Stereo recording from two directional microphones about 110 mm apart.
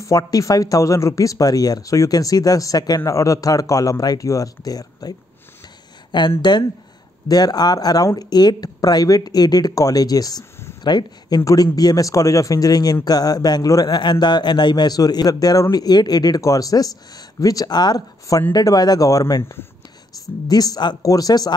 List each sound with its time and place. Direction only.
0.0 s speech: 30° left (ahead or behind)
6.1 s speech: 45° left (ahead or behind)